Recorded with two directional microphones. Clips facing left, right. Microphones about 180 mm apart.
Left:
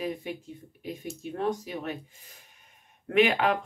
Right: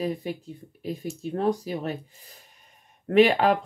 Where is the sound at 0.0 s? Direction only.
35° right (ahead or behind).